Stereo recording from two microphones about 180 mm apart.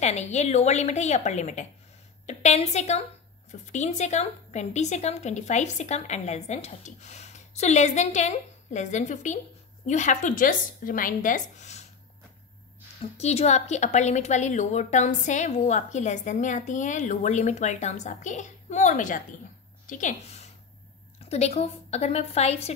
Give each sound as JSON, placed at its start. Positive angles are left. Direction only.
{"t": 0.0, "sound": "a woman's voice", "side_deg": 40}
{"t": 13.2, "sound": "a woman's voice", "side_deg": 35}